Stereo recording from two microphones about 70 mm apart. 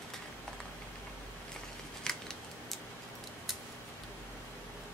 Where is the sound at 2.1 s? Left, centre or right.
Centre.